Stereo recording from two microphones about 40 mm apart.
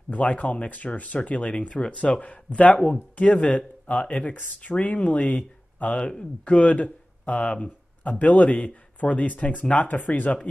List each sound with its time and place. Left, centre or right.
0.1 s speech: left